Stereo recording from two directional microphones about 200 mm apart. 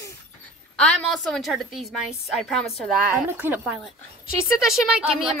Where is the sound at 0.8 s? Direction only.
5° left (ahead or behind).